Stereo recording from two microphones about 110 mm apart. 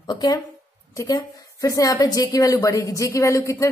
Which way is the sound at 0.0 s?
40° left (ahead or behind).